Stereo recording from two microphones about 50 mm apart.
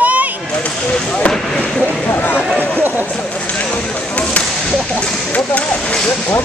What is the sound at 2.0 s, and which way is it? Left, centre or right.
Speech, left.